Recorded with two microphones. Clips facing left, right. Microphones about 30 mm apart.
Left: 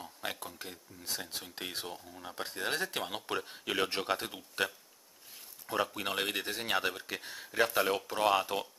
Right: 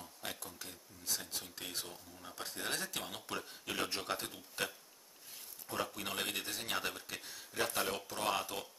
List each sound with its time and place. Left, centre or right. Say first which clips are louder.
0.0 s speech: left 6 dB; left
5.7 s speech: left 6 dB; left